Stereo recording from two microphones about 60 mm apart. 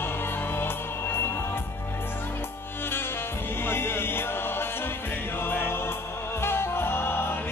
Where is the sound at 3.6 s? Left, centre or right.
Left.